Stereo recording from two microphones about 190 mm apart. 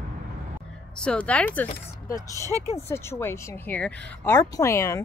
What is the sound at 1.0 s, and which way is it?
A woman's voice, 5° left (ahead or behind).